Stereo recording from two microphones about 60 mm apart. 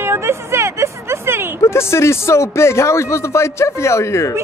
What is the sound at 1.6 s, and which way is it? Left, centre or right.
A man's voice, left.